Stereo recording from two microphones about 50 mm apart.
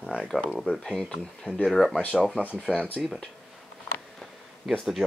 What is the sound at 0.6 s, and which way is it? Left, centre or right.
Speech, centre.